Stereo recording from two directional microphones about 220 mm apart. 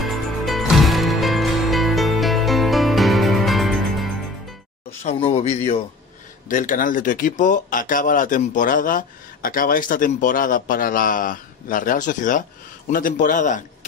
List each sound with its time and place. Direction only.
0.0 s music: centre (ahead or behind)
5.0 s speech: 30° left (ahead or behind)